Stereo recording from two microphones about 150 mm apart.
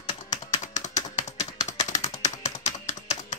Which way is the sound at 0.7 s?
55° left (ahead or behind).